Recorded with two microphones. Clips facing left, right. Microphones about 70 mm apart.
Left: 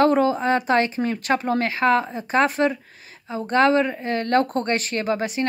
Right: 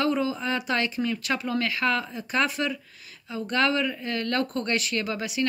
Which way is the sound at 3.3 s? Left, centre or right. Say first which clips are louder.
Left 7 dB; left.